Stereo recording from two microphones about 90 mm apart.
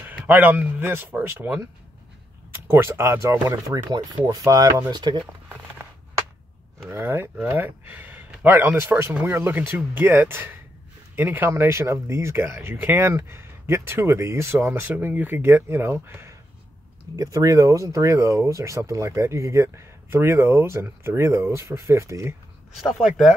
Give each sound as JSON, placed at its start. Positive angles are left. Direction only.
{"t": 0.0, "sound": "speech", "side_deg": -20}
{"t": 6.9, "sound": "speech", "side_deg": -25}
{"t": 17.2, "sound": "speech", "side_deg": -40}
{"t": 22.8, "sound": "speech", "side_deg": -5}